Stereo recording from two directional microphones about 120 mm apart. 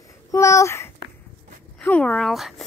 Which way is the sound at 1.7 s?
10° left (ahead or behind).